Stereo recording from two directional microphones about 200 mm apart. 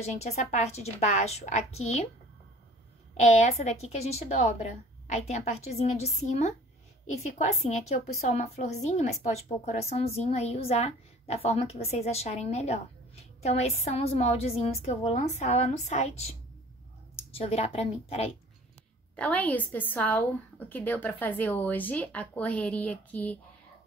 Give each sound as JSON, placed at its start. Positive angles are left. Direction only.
{"t": 0.0, "sound": "a woman's voice", "side_deg": 35}
{"t": 3.2, "sound": "a woman's voice", "side_deg": 35}
{"t": 17.3, "sound": "a woman's voice", "side_deg": 30}
{"t": 19.1, "sound": "a woman's voice", "side_deg": 5}